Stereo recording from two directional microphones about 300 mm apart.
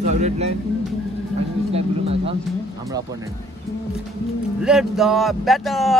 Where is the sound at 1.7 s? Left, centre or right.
Centre.